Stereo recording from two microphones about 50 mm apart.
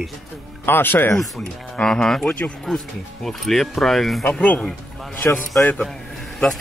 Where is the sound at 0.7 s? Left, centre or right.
Left.